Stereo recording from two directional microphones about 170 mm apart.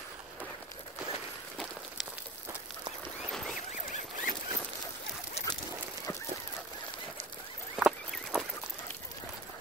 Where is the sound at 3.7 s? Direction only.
45° left (ahead or behind).